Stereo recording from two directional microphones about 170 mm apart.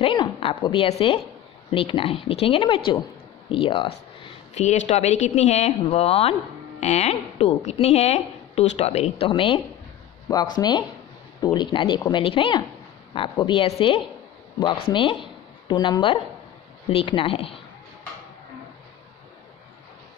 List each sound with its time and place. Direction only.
0.0 s a woman's voice: 30° left (ahead or behind)